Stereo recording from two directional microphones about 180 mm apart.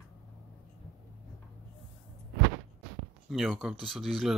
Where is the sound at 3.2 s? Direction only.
Centre (ahead or behind).